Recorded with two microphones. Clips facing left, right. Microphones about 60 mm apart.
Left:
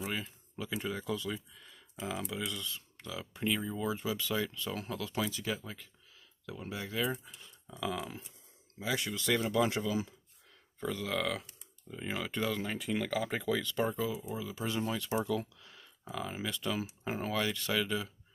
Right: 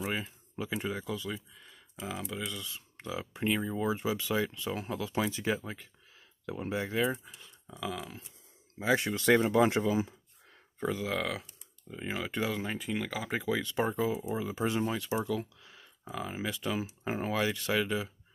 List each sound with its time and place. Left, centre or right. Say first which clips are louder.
0.1 s a sound: right 3 dB; centre
1.0 s speech: even; centre
2.7 s speech: right 4 dB; right
5.2 s speech: right 5 dB; right
7.0 s speech: right 1 dB; centre
8.7 s speech: right 6 dB; right
10.8 s speech: right 2 dB; centre
15.0 s speech: right 1 dB; centre